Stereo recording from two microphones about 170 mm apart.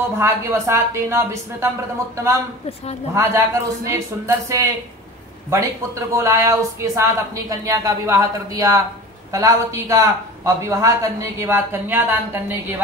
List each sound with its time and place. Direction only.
0.0 s a man's voice: 15° right (ahead or behind)
3.2 s a man's voice: 15° right (ahead or behind)